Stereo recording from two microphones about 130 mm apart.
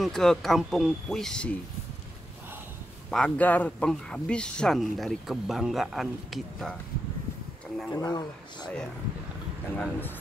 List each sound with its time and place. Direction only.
0.0 s speech: 5° left (ahead or behind)
3.1 s speech: 10° left (ahead or behind)
7.9 s speech: 30° left (ahead or behind)
9.8 s speech: 15° left (ahead or behind)